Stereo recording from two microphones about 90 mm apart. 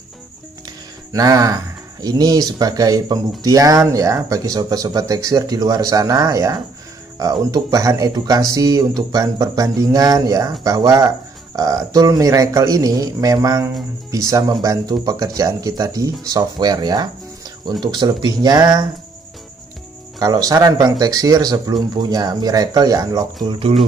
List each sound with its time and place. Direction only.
1.1 s speech: 40° right (ahead or behind)
20.2 s speech: 45° right (ahead or behind)